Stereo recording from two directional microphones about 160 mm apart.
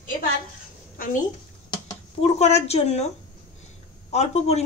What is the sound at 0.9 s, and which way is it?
Speech, 55° left (ahead or behind).